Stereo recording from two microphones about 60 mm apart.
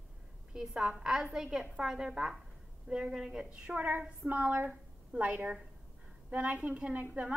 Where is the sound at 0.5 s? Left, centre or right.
Centre.